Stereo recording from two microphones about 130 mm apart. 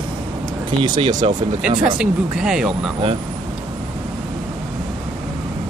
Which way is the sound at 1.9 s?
5° right (ahead or behind).